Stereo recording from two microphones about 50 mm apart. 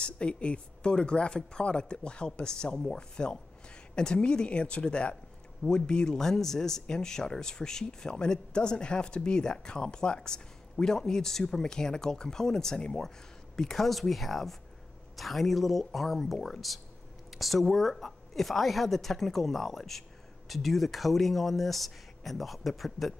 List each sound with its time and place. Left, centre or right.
0.0 s a woman's voice: left; by 16.3 s centre
16.3 s speech: centre
17.3 s a woman's voice: centre